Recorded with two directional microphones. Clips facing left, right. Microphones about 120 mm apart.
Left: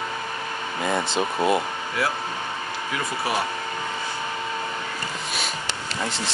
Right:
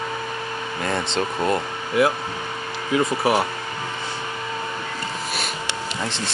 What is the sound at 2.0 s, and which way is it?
Speech, 20° right (ahead or behind).